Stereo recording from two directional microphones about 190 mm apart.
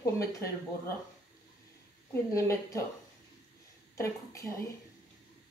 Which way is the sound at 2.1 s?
15° left (ahead or behind).